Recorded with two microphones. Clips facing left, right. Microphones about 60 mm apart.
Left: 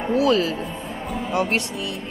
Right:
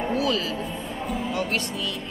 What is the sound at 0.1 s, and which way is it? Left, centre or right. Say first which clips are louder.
Speech: left 9 dB; left.